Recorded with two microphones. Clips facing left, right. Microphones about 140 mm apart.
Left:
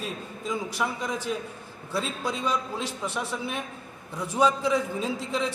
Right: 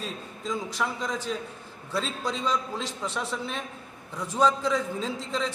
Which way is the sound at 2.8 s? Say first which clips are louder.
Left 1 dB; 60° left (ahead or behind).